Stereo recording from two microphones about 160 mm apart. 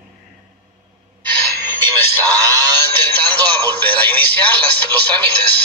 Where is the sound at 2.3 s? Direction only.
20° right (ahead or behind).